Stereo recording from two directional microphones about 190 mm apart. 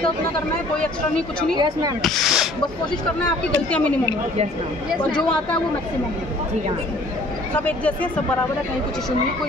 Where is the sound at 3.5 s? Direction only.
5° left (ahead or behind).